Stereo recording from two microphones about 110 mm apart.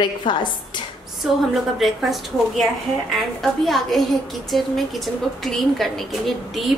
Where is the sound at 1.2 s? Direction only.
Centre (ahead or behind).